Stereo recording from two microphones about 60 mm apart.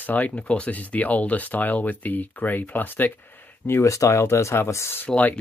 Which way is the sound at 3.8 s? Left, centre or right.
Left.